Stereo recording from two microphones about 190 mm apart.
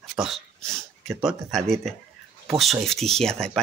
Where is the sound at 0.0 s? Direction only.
Centre (ahead or behind).